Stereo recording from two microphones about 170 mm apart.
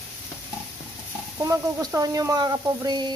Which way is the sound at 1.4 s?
20° right (ahead or behind).